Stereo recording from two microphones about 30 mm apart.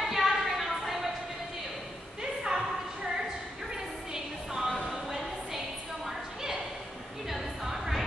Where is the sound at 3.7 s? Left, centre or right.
Centre.